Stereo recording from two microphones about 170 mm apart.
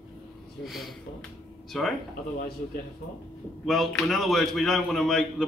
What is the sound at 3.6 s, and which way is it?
Speech, centre (ahead or behind).